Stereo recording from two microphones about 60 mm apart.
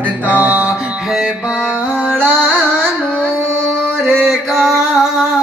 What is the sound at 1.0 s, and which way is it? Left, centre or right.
Music, centre.